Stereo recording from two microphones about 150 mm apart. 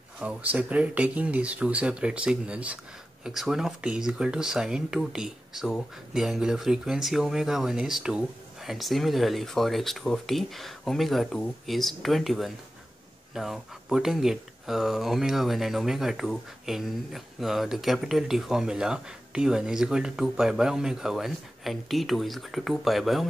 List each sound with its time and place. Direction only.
0.2 s speech: 10° right (ahead or behind)